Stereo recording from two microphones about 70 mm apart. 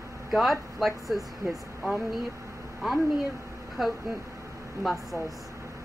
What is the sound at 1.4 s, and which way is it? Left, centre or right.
Speech, right.